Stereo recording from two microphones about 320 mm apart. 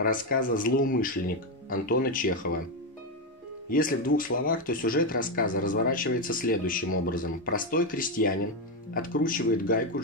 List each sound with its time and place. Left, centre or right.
0.0 s speech: left
3.6 s speech: left